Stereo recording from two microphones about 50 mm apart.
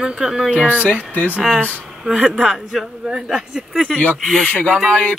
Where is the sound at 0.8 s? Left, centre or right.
Left.